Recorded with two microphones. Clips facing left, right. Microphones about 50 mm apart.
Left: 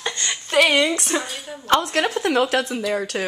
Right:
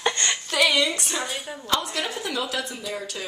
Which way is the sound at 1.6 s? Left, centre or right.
Left.